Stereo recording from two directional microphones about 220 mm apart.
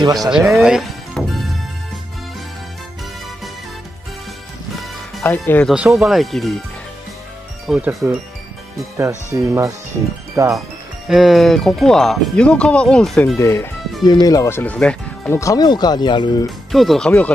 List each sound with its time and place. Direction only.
0.0 s speech: 15° right (ahead or behind)
0.3 s music: centre (ahead or behind)
5.2 s speech: 10° left (ahead or behind)
7.6 s speech: centre (ahead or behind)
9.3 s speech: 15° right (ahead or behind)
11.1 s speech: centre (ahead or behind)
13.4 s speech: 15° left (ahead or behind)
16.4 s speech: centre (ahead or behind)